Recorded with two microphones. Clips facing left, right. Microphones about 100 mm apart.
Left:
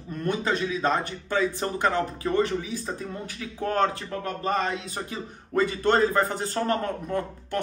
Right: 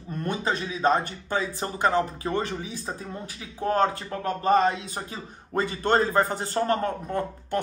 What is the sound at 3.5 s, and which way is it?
A man's voice, 25° right (ahead or behind).